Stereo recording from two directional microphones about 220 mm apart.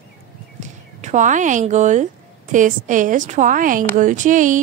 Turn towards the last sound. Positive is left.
turn(degrees=-35)  # may be behind; listen again after turning